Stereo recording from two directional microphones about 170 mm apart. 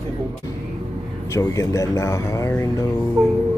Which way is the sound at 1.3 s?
20° left (ahead or behind).